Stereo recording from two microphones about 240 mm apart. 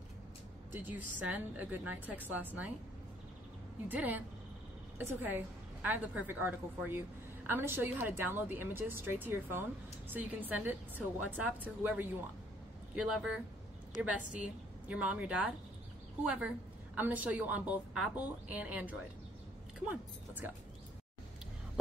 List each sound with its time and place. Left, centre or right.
0.7 s speech: centre
3.9 s a woman's voice: centre
16.9 s speech: centre